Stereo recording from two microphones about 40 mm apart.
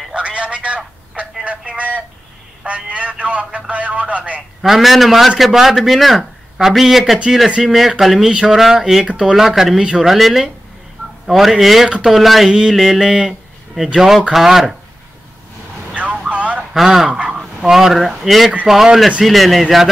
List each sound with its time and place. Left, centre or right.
0.1 s telephone: right
1.4 s a sound: right
4.6 s speech: centre
12.7 s speech: centre
15.9 s vehicle: right
16.3 s a sound: right
16.7 s speech: centre